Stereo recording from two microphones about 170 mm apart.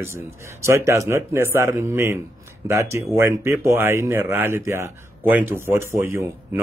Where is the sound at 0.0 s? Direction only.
15° right (ahead or behind).